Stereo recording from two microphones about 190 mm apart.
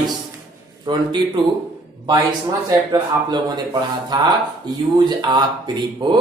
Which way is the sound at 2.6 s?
20° right (ahead or behind).